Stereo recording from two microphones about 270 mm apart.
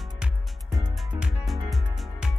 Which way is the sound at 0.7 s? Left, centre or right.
Centre.